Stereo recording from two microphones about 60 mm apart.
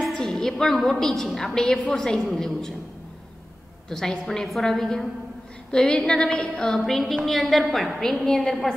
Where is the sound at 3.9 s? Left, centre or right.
Centre.